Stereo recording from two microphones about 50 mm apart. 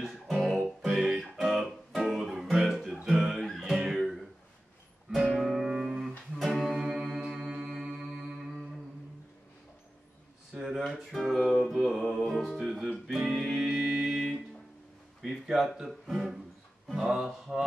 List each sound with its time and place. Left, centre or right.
0.0 s music: centre
3.7 s music: centre
5.4 s music: centre
6.0 s music: centre
6.8 s mantra: centre
10.5 s a sound: centre
10.8 s music: centre
15.4 s a sound: centre
15.9 s music: centre
17.0 s mantra: centre